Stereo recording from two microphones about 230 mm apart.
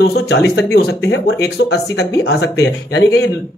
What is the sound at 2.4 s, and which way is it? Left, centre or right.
Speech, left.